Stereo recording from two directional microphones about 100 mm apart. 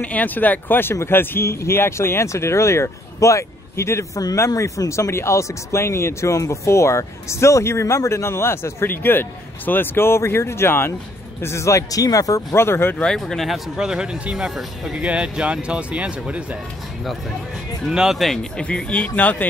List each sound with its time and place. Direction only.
0.0 s speech: 15° left (ahead or behind)
13.0 s speech: 5° left (ahead or behind); by 16.4 s 15° right (ahead or behind)
17.8 s speech: 5° right (ahead or behind)
18.3 s speech: 10° left (ahead or behind)